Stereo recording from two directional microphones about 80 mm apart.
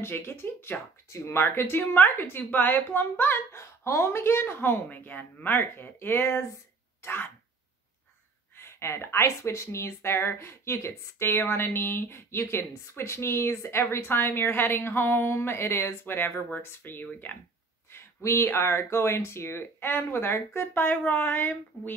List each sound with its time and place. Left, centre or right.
0.0 s speech: left
8.5 s speech: left
17.9 s speech: left